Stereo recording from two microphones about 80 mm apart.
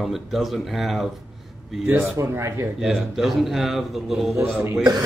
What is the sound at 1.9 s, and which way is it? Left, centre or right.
Speech, right.